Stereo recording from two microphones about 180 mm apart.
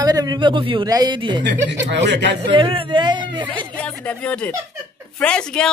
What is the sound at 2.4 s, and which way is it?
Speech, 30° right (ahead or behind).